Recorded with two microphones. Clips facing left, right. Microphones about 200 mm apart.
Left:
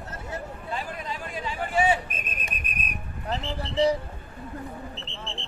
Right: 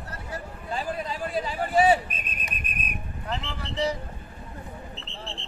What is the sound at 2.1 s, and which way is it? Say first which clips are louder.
Whistle: left 1 dB; 45° left (ahead or behind).